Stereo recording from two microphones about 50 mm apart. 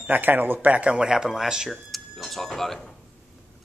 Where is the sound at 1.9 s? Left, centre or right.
Centre.